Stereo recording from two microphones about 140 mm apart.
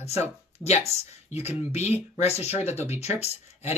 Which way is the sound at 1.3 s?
50° left (ahead or behind).